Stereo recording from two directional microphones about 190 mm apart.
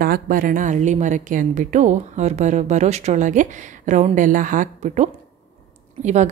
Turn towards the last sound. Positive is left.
turn(degrees=-40)  # may be behind; listen again after turning